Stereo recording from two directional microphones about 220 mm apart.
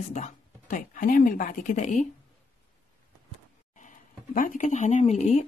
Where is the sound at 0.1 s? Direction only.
35° left (ahead or behind).